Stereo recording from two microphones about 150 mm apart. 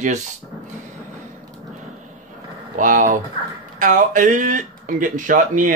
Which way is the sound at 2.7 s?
60° right (ahead or behind).